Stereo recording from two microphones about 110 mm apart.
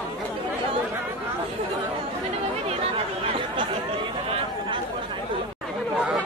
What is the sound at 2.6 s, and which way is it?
Chatter, 60° right (ahead or behind).